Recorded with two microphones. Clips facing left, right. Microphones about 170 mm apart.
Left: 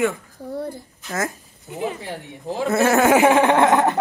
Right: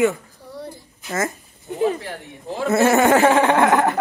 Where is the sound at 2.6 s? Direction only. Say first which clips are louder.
Right 1 dB; centre (ahead or behind).